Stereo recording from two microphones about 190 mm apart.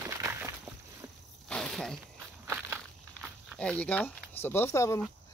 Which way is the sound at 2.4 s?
10° right (ahead or behind).